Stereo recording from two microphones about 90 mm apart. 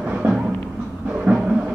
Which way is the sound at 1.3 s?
15° right (ahead or behind).